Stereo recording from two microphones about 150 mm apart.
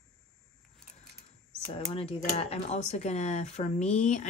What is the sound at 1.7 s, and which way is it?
Speech, 40° left (ahead or behind).